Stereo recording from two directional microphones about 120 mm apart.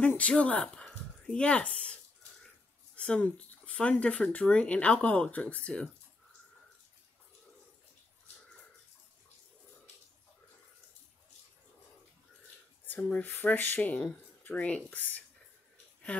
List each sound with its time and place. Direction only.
0.2 s speech: 10° left (ahead or behind)
3.0 s speech: 10° left (ahead or behind)
12.8 s speech: 15° left (ahead or behind)